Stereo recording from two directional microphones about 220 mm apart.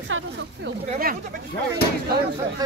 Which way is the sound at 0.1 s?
60° right (ahead or behind).